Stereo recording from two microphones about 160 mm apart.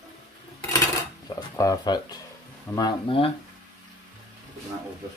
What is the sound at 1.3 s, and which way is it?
Speech, 20° left (ahead or behind).